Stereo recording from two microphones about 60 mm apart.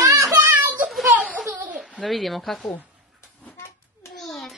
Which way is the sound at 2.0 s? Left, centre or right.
Centre.